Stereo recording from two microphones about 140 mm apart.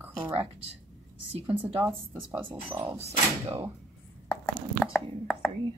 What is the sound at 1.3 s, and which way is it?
Speech, 40° right (ahead or behind).